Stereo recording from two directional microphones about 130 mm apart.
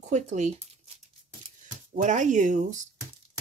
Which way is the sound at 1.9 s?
70° right (ahead or behind).